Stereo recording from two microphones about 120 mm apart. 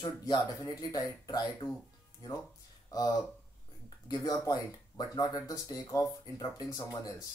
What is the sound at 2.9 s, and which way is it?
Speech, 30° left (ahead or behind).